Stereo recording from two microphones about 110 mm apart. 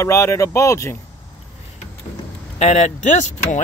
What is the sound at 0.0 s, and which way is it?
Speech, 25° left (ahead or behind).